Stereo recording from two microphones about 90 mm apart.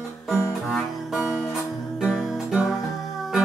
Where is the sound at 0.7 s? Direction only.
5° right (ahead or behind).